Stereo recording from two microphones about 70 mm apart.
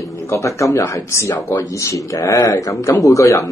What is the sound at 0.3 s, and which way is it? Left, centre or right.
Speech, left.